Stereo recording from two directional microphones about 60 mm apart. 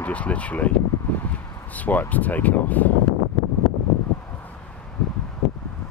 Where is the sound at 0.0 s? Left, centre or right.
Left.